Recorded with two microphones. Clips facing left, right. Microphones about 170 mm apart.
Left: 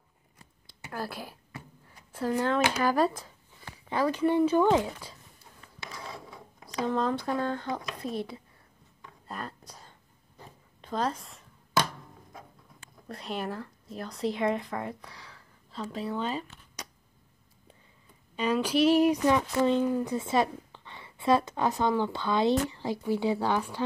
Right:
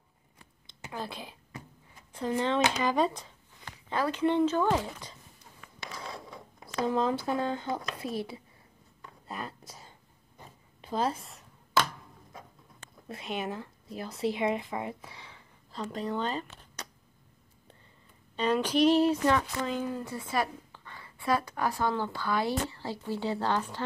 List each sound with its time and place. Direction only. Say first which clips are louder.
0.9 s speech: left 2 dB; 5° left (ahead or behind)
2.4 s speech: left 1 dB; 5° left (ahead or behind)
3.9 s speech: left 2 dB; 15° left (ahead or behind)
6.6 s speech: even; centre (ahead or behind)
9.3 s a sound: even; centre (ahead or behind)
10.8 s a woman's voice: even; 5° right (ahead or behind)
13.1 s speech: even; centre (ahead or behind)
18.3 s a woman's voice: even; 10° left (ahead or behind)